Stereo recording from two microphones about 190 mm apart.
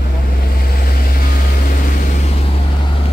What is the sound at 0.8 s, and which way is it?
Vehicle, 50° left (ahead or behind).